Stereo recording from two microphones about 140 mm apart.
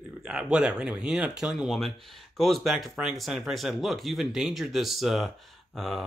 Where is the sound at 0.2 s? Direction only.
5° right (ahead or behind).